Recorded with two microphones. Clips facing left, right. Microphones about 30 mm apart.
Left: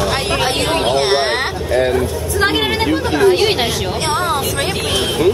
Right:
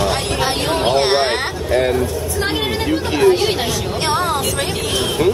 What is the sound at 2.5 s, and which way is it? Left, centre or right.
Speech, left.